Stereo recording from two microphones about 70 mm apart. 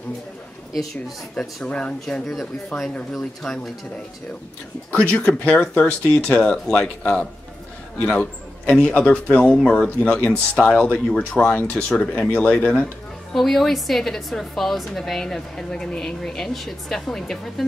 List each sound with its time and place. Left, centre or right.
1.3 s a man's voice: centre
2.9 s a man's voice: centre
3.2 s speech: centre
4.9 s a man's voice: centre